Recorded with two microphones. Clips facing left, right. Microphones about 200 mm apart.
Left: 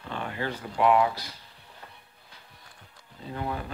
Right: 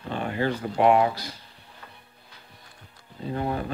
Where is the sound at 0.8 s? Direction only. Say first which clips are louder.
Right 3 dB; 25° right (ahead or behind).